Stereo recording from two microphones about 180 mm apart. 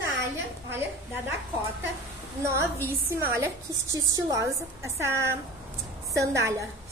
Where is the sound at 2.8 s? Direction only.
10° right (ahead or behind).